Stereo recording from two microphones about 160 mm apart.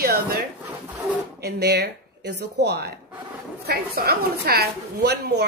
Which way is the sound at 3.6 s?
80° right.